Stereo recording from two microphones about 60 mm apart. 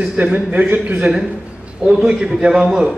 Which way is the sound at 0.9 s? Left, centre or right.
Centre.